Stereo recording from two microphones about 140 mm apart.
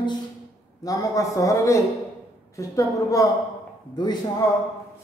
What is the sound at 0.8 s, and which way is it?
A man's voice, 25° left (ahead or behind).